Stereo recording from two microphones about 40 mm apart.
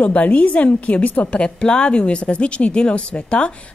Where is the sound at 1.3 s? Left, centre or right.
Left.